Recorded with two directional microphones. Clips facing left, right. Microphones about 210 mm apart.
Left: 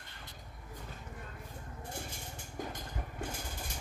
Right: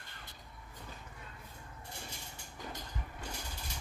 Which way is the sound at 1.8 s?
50° left (ahead or behind).